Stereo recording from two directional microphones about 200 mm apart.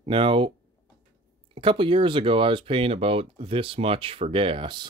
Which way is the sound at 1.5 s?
25° right (ahead or behind).